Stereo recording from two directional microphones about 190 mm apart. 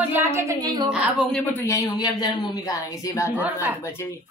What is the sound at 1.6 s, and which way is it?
A woman's voice, 20° left (ahead or behind).